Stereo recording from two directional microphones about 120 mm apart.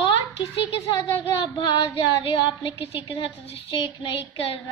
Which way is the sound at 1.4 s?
45° left (ahead or behind).